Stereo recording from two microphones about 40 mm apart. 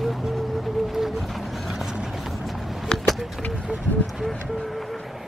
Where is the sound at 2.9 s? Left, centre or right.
Left.